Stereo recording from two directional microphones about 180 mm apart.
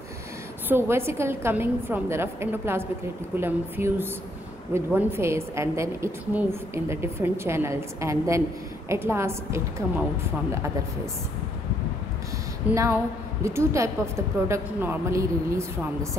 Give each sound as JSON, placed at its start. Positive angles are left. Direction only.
{"t": 0.7, "sound": "a woman's voice", "side_deg": -15}
{"t": 12.6, "sound": "a woman's voice", "side_deg": -15}